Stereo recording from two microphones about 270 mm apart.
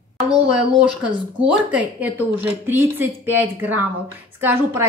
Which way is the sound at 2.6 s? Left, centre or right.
Centre.